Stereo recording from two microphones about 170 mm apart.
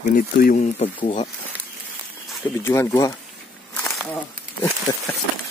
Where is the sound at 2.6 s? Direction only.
15° left (ahead or behind).